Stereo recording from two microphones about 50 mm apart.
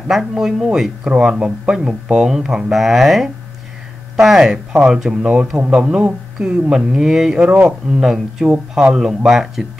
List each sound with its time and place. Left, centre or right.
0.1 s speech: centre
5.5 s speech: centre
5.9 s speech: right; by 9.7 s centre